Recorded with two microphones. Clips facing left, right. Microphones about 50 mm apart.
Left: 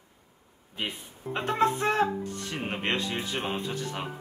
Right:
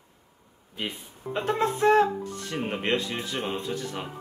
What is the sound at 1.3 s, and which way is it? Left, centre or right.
Speech, left.